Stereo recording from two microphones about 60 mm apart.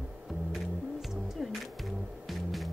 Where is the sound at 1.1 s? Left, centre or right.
Centre.